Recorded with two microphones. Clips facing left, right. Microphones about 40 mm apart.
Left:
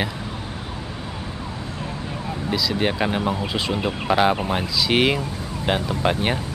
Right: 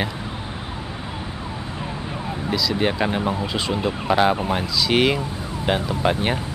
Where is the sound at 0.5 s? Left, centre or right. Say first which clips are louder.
Right 1 dB; centre.